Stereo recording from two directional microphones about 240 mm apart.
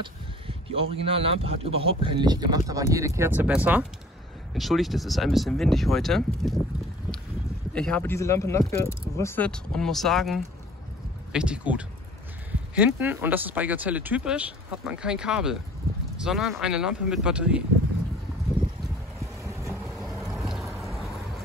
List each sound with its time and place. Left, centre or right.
0.0 s speech: right; by 6.6 s centre
7.7 s speech: centre
19.4 s vehicle: centre
20.0 s boat: centre